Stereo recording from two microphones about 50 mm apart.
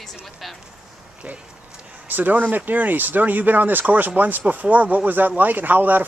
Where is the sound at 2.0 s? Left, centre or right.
Right.